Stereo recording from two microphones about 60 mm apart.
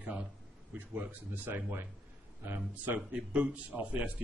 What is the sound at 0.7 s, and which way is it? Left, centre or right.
A man's voice, right.